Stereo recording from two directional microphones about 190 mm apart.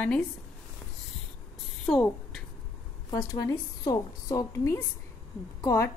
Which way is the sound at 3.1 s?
20° left (ahead or behind).